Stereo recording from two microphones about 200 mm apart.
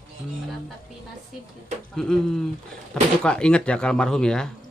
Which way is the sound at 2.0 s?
Centre (ahead or behind).